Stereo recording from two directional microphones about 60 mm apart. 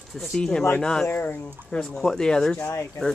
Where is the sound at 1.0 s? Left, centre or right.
Left.